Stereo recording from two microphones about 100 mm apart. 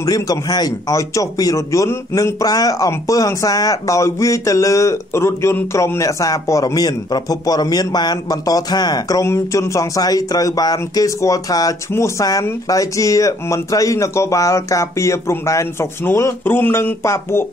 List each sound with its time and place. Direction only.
0.0 s speech: 40° left (ahead or behind)
9.2 s speech: 30° left (ahead or behind)